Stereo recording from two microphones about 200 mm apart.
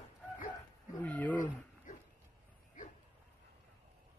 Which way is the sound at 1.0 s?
5° left (ahead or behind).